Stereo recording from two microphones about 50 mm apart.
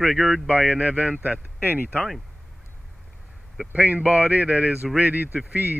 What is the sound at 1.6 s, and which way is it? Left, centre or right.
Speech, right.